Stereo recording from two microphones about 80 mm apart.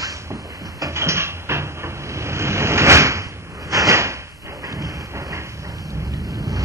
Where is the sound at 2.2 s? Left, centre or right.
Right.